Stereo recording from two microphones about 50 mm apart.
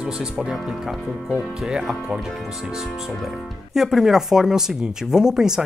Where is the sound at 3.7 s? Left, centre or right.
Centre.